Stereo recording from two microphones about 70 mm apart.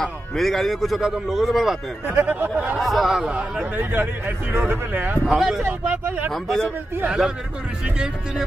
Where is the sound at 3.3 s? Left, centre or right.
Centre.